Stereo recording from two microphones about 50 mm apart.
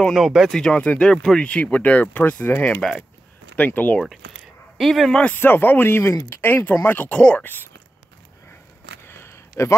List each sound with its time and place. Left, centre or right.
0.1 s speech: centre
0.5 s speech: centre
1.1 s speech: centre
1.4 s speech: left
2.8 s speech: centre
3.5 s speech: left
4.7 s speech: centre
5.3 s speech: left
6.4 s speech: left
7.1 s speech: left
9.0 s a sound: left